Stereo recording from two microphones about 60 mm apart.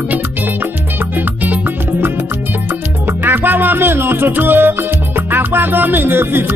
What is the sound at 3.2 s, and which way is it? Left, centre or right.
Music, right.